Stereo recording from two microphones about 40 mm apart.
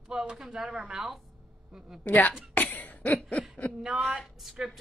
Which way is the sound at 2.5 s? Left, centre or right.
Left.